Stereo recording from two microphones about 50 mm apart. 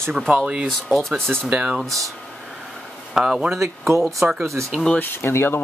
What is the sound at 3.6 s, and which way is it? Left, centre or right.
Speech, right.